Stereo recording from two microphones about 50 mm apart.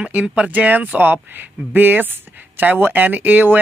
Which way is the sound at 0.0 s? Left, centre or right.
Right.